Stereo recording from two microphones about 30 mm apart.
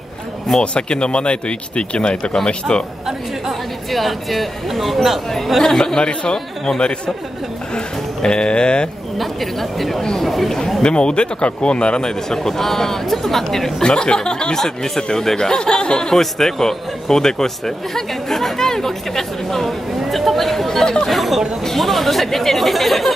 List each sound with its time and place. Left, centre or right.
0.6 s speech: left
3.9 s speech: centre
5.9 s speech: left
6.3 s speech: centre
7.7 s speech: left
9.2 s speech: centre
10.8 s speech: left
12.0 s speech: left
12.4 s speech: centre
13.8 s speech: left
14.6 s speech: centre
16.1 s speech: centre
20.8 s speech: centre
21.1 s speech: centre